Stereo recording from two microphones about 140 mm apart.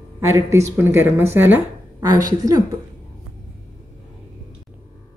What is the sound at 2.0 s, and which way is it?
Speech, 25° right (ahead or behind).